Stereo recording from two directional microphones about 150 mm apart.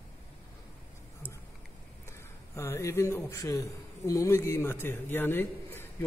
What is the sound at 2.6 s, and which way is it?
A man's voice, 20° left (ahead or behind).